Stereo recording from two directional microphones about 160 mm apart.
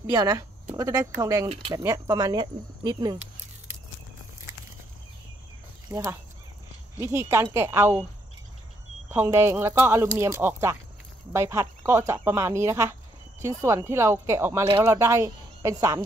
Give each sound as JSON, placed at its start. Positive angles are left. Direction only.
{"t": 0.1, "sound": "speech", "side_deg": -20}
{"t": 5.9, "sound": "speech", "side_deg": -15}
{"t": 9.1, "sound": "speech", "side_deg": -15}